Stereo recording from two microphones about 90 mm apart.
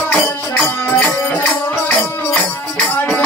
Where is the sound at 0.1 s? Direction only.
15° left (ahead or behind).